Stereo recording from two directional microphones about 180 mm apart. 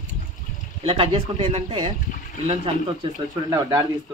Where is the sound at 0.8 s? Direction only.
30° right (ahead or behind).